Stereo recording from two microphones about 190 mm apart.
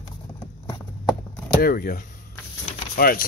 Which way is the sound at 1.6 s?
50° left (ahead or behind).